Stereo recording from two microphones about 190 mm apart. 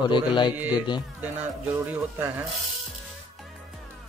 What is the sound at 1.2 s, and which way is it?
Speech, 10° right (ahead or behind).